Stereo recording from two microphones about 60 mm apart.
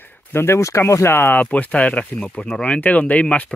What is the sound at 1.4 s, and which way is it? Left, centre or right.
Speech, left.